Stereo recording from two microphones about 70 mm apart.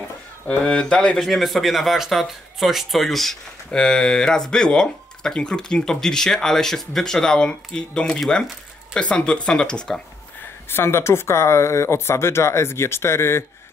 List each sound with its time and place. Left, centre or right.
0.5 s speech: centre
10.7 s speech: left